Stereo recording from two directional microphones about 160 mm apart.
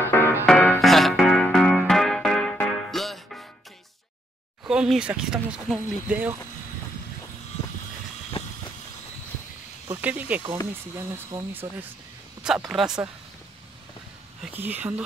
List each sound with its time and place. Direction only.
0.0 s music: 15° left (ahead or behind)
4.6 s speech: 5° right (ahead or behind)
8.3 s vehicle: 35° left (ahead or behind)
9.8 s speech: 10° right (ahead or behind)
12.4 s speech: centre (ahead or behind)
14.6 s speech: 10° right (ahead or behind)